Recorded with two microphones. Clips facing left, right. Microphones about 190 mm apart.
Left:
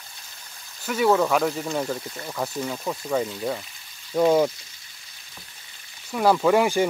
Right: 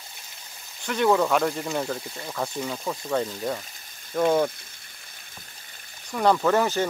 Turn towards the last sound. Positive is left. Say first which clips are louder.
# left 3 dB
turn(degrees=10)  # may be behind; listen again after turning